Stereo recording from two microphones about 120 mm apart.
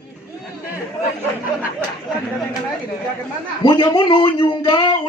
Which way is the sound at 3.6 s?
40° left (ahead or behind).